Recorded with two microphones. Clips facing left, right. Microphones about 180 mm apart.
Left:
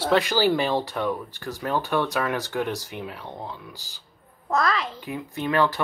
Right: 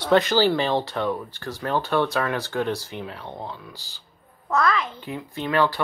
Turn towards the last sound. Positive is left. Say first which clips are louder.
# even
turn(degrees=20)  # may be behind; listen again after turning